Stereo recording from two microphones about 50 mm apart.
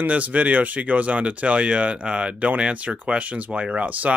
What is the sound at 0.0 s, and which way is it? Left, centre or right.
Speech, right.